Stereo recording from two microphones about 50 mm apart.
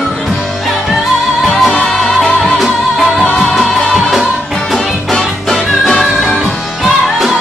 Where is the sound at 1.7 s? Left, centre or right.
Centre.